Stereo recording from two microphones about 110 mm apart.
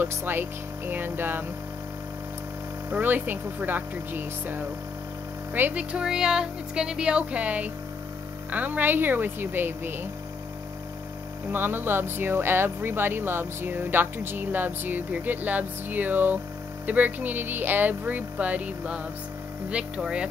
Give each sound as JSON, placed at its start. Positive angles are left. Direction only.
{"t": 0.0, "sound": "speech", "side_deg": -20}
{"t": 2.9, "sound": "speech", "side_deg": -20}
{"t": 11.5, "sound": "speech", "side_deg": -20}